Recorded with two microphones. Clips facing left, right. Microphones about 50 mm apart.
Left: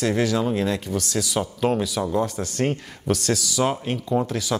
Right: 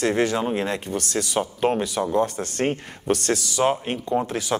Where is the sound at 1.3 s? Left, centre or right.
Centre.